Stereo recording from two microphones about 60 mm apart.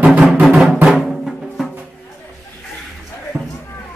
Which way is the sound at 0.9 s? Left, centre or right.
Centre.